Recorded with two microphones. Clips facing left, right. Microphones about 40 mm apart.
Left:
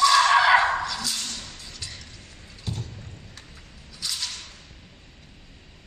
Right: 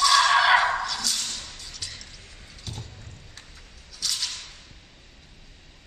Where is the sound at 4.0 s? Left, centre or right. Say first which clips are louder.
Right 1 dB; centre.